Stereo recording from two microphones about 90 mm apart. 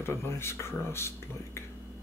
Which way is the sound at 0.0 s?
30° left (ahead or behind).